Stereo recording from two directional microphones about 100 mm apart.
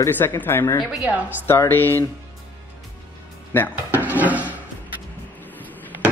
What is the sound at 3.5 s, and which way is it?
Speech, 20° left (ahead or behind).